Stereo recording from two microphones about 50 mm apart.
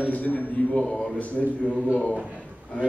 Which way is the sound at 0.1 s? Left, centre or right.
Left.